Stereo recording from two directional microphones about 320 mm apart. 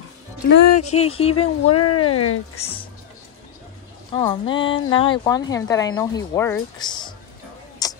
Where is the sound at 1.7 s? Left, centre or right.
Left.